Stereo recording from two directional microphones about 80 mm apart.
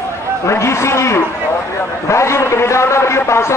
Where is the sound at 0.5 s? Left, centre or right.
Left.